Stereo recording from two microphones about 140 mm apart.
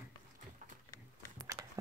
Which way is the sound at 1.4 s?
20° right (ahead or behind).